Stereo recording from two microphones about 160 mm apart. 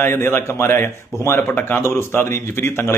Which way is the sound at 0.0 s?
15° left (ahead or behind).